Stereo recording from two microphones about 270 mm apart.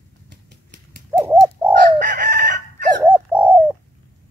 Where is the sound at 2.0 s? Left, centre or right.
Right.